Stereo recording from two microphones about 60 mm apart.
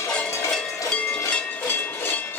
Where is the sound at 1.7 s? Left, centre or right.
Left.